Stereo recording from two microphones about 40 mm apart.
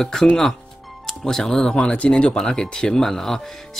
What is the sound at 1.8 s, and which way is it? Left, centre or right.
Speech, left.